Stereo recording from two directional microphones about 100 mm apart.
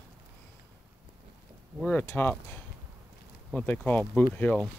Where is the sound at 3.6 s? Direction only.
15° left (ahead or behind).